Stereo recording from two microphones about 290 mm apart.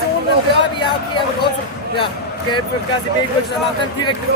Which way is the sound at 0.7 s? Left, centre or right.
Centre.